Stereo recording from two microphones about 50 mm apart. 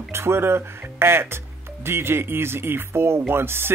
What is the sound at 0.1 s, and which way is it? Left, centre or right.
Speech, right.